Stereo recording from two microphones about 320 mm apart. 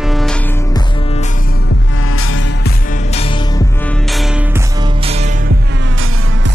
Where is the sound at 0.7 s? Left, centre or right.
Centre.